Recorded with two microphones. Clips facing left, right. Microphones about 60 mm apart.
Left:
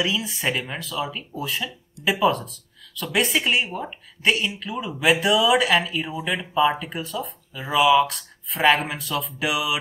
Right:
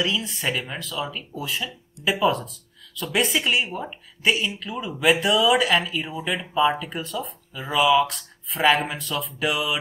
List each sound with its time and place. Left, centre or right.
0.0 s a woman's voice: centre